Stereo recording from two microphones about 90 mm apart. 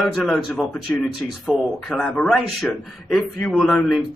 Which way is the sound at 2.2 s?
Centre (ahead or behind).